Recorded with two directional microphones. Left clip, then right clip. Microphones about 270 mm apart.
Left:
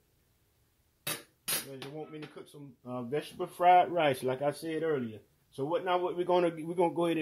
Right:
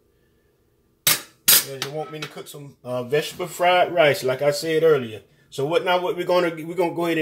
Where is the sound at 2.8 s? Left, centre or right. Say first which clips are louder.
Right 13 dB; left.